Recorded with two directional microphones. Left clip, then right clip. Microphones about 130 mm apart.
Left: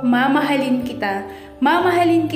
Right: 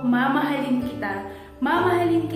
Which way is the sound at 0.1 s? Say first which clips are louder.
Left 5 dB; 45° left (ahead or behind).